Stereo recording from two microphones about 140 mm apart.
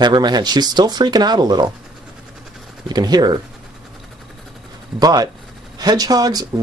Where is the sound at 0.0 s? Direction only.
30° right (ahead or behind).